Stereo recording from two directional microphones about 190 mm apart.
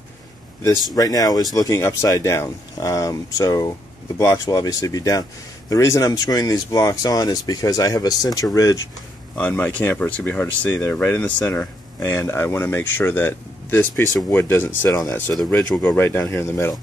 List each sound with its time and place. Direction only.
0.9 s speech: 20° left (ahead or behind)